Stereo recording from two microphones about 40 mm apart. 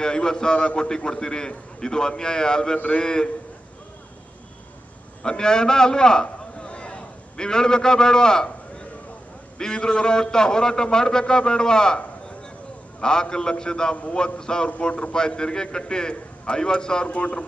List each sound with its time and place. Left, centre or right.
0.0 s a man's voice: centre
5.2 s a man's voice: centre
6.2 s a sound: left
9.6 s a man's voice: centre
13.0 s a man's voice: centre